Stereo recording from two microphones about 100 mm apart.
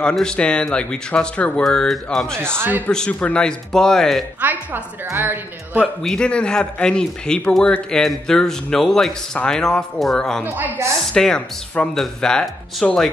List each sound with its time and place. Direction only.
0.0 s speech: 10° left (ahead or behind)
2.4 s a woman's voice: 25° right (ahead or behind)
2.9 s speech: 10° left (ahead or behind)
4.4 s a woman's voice: 15° right (ahead or behind)
6.0 s speech: 10° left (ahead or behind)